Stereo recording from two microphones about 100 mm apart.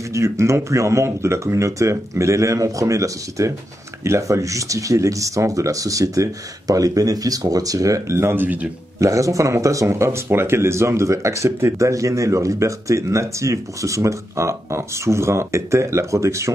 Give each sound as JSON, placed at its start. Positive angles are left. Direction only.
{"t": 0.1, "sound": "speech", "side_deg": -30}
{"t": 9.0, "sound": "speech", "side_deg": -30}